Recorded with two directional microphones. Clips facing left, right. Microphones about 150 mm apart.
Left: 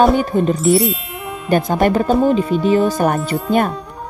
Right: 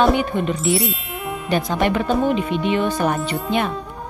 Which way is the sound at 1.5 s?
50° left (ahead or behind).